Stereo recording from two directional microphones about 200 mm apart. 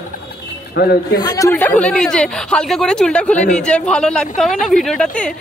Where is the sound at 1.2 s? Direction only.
15° left (ahead or behind).